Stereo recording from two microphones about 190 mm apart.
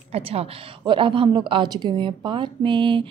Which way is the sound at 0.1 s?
30° right (ahead or behind).